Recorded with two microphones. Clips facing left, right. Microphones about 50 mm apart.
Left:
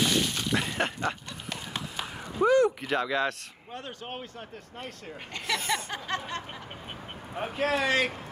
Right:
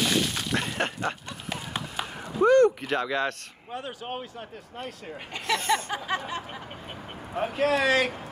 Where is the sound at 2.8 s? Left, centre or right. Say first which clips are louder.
Right 1 dB; centre.